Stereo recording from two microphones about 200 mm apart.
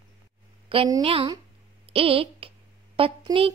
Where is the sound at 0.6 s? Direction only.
25° right (ahead or behind).